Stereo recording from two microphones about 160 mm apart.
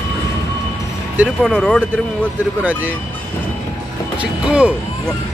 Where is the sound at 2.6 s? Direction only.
10° right (ahead or behind).